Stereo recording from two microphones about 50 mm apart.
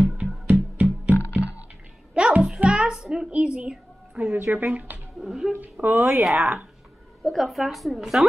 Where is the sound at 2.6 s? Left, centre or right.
Centre.